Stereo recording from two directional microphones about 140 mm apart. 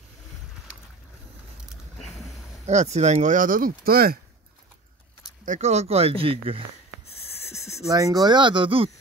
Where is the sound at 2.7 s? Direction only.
55° right (ahead or behind); by 4.1 s 90° right.